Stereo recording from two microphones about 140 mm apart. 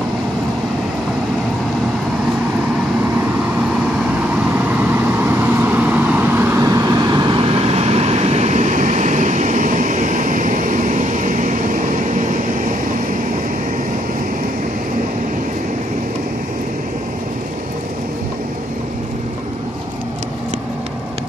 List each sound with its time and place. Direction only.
4.6 s vehicle: 15° right (ahead or behind); by 13.2 s 70° right (ahead or behind)